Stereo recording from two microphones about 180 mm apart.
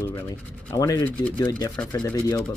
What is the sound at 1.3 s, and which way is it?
Speech, 25° left (ahead or behind).